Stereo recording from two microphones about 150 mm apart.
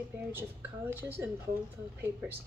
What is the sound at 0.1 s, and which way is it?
Speech, 15° right (ahead or behind).